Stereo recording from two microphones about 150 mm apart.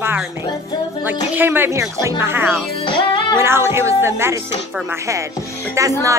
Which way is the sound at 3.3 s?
15° right (ahead or behind).